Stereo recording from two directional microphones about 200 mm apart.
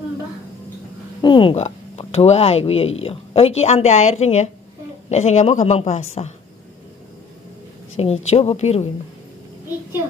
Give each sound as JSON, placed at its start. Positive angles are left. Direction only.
{"t": 1.2, "sound": "speech", "side_deg": 25}
{"t": 8.0, "sound": "speech", "side_deg": 35}